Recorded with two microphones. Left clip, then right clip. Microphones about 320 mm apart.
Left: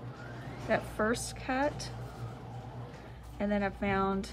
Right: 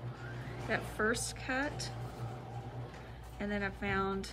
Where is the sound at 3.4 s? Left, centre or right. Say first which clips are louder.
Left 5 dB; centre.